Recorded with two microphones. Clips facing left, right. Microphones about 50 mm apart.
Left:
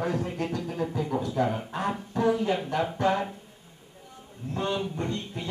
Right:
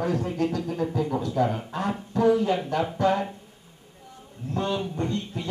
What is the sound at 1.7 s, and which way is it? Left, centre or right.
Speech, left.